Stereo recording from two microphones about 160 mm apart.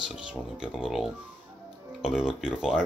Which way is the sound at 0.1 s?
5° right (ahead or behind).